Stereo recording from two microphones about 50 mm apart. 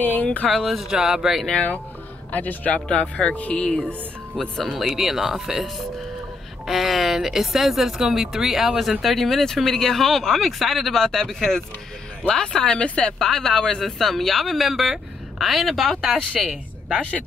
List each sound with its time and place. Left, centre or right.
0.0 s a sound: left
0.5 s speech: centre
1.5 s speech: left
2.9 s speech: centre
3.3 s speech: left
4.4 s speech: centre
4.7 s speech: centre
6.6 s speech: centre